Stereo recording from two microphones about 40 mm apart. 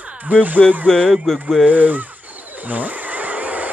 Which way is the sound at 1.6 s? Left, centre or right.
Right.